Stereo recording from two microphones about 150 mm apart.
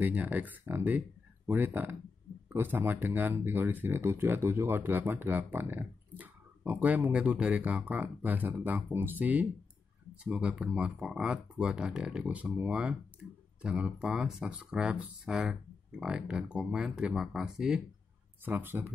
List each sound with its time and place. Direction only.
0.0 s speech: 10° right (ahead or behind)